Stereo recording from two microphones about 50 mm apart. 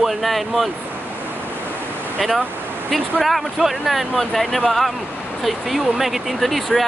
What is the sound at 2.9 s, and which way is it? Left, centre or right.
Speech, centre.